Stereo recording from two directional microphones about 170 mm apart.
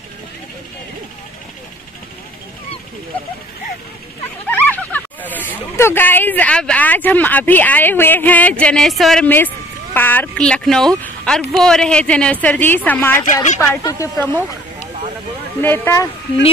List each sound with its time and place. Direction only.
4.5 s speech: 10° left (ahead or behind)
15.6 s speech: 10° left (ahead or behind)